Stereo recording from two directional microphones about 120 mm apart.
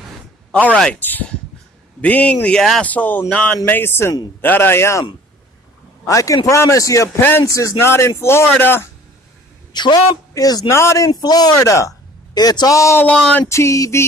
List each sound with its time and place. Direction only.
0.5 s speech: 10° left (ahead or behind)
2.0 s a man's voice: 15° left (ahead or behind)
6.0 s a man's voice: 30° left (ahead or behind)
9.7 s a man's voice: 35° left (ahead or behind)
13.0 s speech: 10° left (ahead or behind)
13.5 s a man's voice: 25° left (ahead or behind)